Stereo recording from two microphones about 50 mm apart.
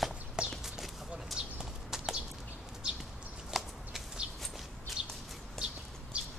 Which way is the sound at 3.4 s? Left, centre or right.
Centre.